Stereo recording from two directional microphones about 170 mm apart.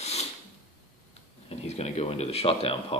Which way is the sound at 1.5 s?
35° left (ahead or behind).